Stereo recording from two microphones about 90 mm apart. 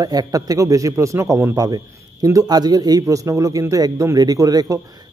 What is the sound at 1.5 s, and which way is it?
A man's voice, 45° right (ahead or behind).